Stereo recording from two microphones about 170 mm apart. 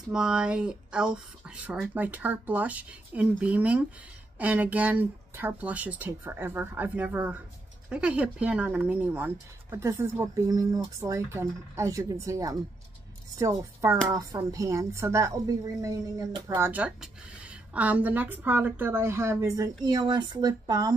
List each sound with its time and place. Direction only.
0.1 s a woman's voice: 5° right (ahead or behind); by 20.9 s 25° right (ahead or behind)